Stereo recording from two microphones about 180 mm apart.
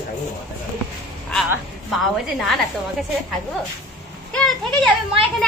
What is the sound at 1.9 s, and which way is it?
Speech, centre (ahead or behind).